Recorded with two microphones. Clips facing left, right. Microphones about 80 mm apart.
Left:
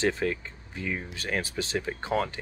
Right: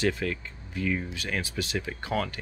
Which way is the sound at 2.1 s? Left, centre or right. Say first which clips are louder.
Left 2 dB; left.